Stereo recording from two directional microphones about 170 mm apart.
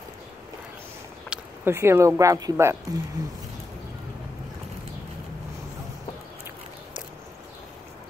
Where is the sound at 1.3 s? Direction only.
15° right (ahead or behind).